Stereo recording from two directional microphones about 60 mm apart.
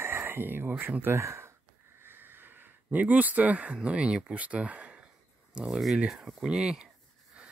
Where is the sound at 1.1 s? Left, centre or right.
Right.